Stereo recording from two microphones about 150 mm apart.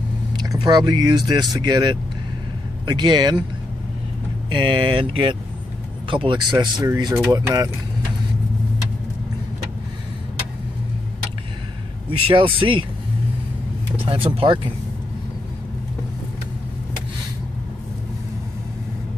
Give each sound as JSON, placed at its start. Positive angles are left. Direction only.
{"t": 0.4, "sound": "speech", "side_deg": -30}
{"t": 4.5, "sound": "speech", "side_deg": -30}
{"t": 12.1, "sound": "speech", "side_deg": -35}
{"t": 14.0, "sound": "speech", "side_deg": -35}